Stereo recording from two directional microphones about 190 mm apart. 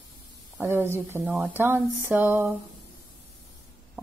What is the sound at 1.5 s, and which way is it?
Speech, 10° right (ahead or behind).